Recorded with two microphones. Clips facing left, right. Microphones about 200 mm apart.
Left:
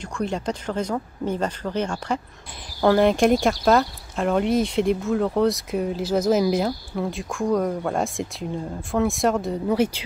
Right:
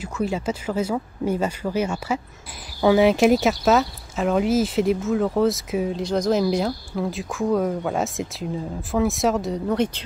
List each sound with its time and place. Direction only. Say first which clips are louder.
0.0 s speech: right 2 dB; 5° right (ahead or behind)